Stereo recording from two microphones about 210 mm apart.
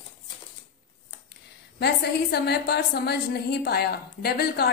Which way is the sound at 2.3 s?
50° left (ahead or behind).